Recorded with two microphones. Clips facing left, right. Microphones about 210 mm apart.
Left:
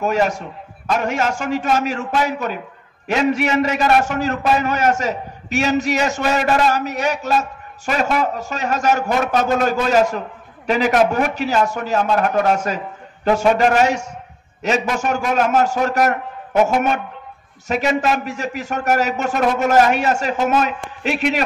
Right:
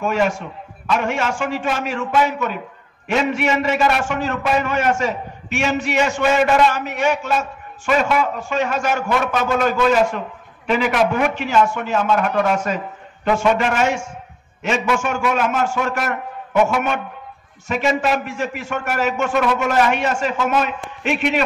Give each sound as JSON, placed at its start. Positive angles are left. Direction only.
{"t": 0.0, "sound": "a man's voice", "side_deg": 40}